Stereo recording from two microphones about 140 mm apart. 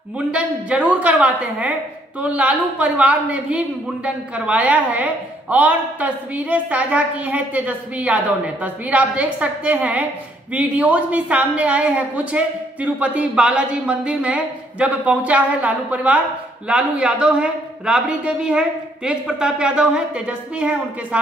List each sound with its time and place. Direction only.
0.3 s a woman's voice: 10° right (ahead or behind)